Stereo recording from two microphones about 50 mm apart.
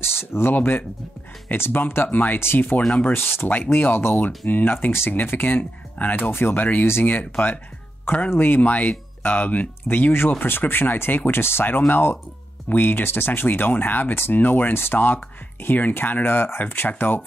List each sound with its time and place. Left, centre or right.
0.0 s speech: left
0.6 s speech: left
2.4 s speech: left
10.4 s speech: left